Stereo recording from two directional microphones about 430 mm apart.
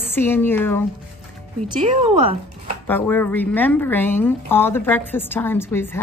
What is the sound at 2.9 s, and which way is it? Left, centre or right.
A woman's voice, centre.